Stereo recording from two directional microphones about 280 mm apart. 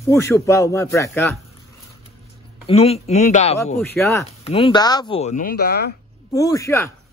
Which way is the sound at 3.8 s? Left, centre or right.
Centre.